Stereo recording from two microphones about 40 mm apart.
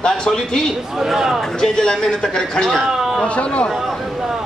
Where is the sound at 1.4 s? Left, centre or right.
Centre.